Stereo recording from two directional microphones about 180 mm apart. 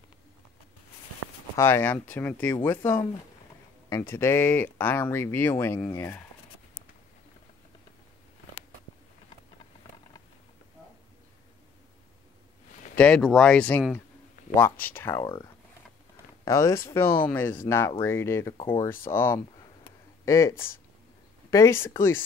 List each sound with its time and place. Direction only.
1.6 s speech: 10° left (ahead or behind)
12.9 s speech: 5° left (ahead or behind)
15.2 s speech: 25° left (ahead or behind)